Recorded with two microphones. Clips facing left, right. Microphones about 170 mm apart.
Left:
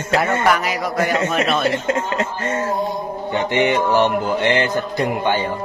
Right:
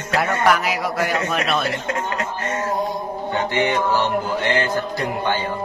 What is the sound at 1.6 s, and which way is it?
Speech, 25° left (ahead or behind).